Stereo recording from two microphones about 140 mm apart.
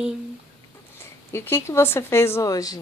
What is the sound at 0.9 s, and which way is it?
Speech, 15° left (ahead or behind).